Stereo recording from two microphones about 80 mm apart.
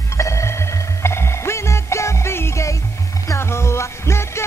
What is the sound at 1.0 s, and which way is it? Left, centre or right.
Music, left.